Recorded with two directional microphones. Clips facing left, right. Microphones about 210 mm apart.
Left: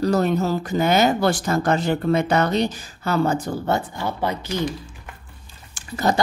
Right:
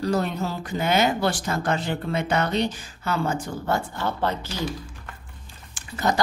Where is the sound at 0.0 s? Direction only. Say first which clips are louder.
Left 5 dB; 45° left (ahead or behind).